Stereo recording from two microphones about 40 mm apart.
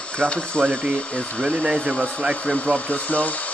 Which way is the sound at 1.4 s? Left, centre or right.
Centre.